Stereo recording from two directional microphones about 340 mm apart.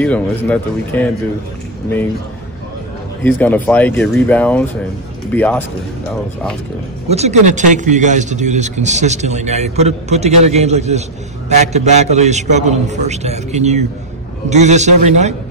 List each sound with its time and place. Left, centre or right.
0.0 s speech: centre
3.3 s speech: centre
7.1 s a man's voice: centre